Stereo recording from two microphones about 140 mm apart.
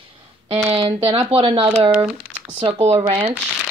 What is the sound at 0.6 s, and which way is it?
Speech, 40° right (ahead or behind).